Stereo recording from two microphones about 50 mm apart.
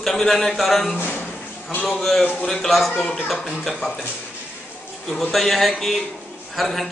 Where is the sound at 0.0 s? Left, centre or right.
Centre.